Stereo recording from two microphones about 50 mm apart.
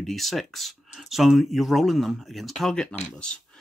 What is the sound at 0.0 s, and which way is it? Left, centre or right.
Speech, centre.